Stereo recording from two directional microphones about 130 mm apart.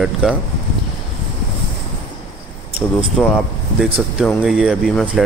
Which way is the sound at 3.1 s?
5° left (ahead or behind).